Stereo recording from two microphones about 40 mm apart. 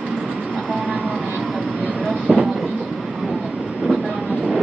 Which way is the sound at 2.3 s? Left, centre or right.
Centre.